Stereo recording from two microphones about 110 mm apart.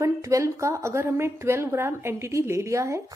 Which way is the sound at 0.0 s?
30° right (ahead or behind).